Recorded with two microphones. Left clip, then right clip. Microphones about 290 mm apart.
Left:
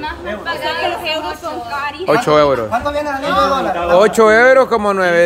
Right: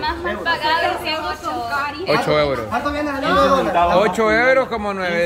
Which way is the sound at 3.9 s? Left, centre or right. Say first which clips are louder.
Left 6 dB; centre.